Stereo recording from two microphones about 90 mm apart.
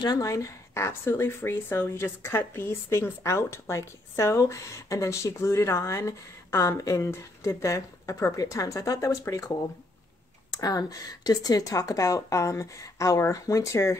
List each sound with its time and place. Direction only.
0.0 s speech: 45° left (ahead or behind)
10.6 s speech: 45° left (ahead or behind)